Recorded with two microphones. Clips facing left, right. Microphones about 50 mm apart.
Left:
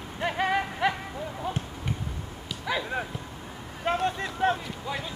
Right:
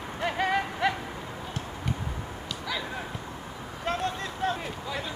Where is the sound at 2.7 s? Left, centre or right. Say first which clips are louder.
Left 5 dB; left.